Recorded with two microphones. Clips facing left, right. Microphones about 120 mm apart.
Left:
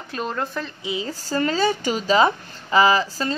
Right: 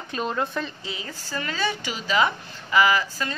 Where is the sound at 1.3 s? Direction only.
35° left (ahead or behind).